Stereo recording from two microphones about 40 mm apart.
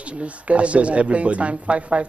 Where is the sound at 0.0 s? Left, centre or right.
Right.